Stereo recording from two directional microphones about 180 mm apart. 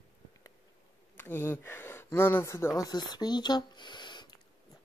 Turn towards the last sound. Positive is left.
turn(degrees=25)  # may be behind; listen again after turning